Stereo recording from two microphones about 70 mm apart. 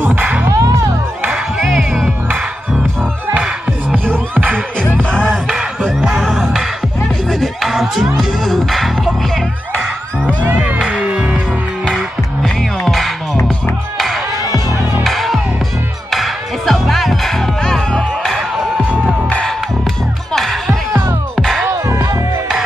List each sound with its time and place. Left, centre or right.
0.0 s music: right
0.5 s music: right
1.6 s music: centre
4.9 s music: centre
5.9 s music: centre
10.2 s music: right
10.6 s music: centre
11.8 s music: centre
18.8 s music: centre
20.3 s music: centre
21.6 s music: right